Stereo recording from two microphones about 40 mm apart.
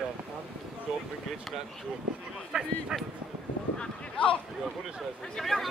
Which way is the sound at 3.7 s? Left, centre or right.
Left.